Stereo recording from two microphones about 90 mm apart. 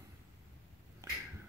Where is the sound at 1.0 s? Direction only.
35° right (ahead or behind).